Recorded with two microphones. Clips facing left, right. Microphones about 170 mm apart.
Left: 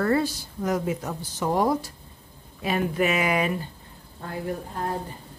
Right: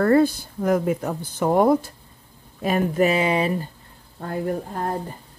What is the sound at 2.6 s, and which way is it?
Speech, 45° right (ahead or behind).